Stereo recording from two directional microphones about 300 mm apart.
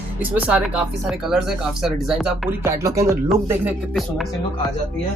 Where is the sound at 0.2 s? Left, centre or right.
Centre.